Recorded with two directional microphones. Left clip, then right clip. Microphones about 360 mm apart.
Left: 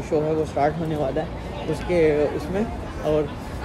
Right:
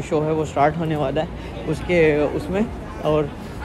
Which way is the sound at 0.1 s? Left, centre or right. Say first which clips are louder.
Right 1 dB; right.